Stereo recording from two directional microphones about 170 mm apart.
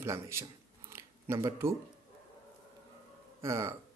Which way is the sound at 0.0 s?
15° right (ahead or behind).